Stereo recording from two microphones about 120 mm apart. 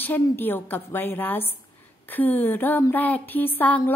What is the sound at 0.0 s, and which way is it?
Speech, 15° left (ahead or behind).